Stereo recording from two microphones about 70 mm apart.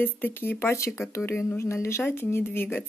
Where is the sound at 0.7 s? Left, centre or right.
Left.